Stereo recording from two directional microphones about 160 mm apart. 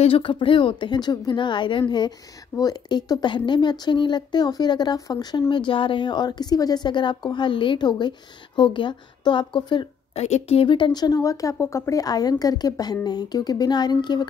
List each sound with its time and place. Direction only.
0.0 s a woman's voice: 35° left (ahead or behind)
10.2 s a woman's voice: 40° left (ahead or behind)